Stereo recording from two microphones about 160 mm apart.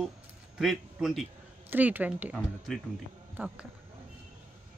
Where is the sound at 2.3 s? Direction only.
5° left (ahead or behind).